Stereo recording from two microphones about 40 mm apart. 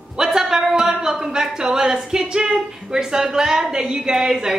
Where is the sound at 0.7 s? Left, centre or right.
Centre.